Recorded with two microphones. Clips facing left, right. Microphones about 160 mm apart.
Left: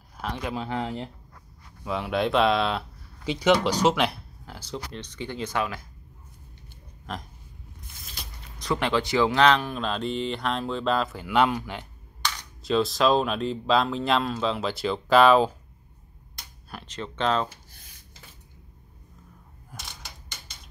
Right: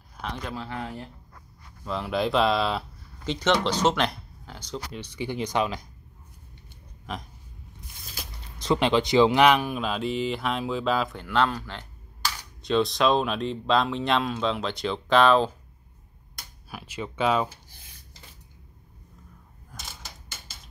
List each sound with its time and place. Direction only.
0.2 s speech: 5° left (ahead or behind)
0.6 s speech: 20° left (ahead or behind)
1.9 s speech: centre (ahead or behind)
4.9 s speech: 10° right (ahead or behind)
7.1 s speech: centre (ahead or behind)
8.5 s speech: 20° right (ahead or behind); by 11.8 s 10° left (ahead or behind)
12.2 s speech: 5° right (ahead or behind)
16.7 s speech: 10° right (ahead or behind)
19.7 s mechanisms: centre (ahead or behind)